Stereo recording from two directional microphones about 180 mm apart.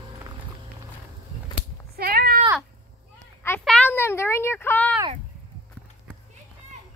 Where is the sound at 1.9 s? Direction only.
55° right (ahead or behind).